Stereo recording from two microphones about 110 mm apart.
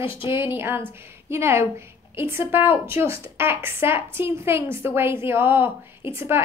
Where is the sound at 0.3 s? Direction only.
20° right (ahead or behind).